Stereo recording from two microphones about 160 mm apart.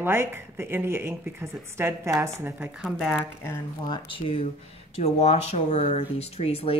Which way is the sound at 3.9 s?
35° left (ahead or behind).